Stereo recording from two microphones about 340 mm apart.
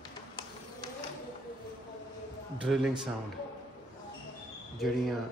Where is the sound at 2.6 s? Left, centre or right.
Centre.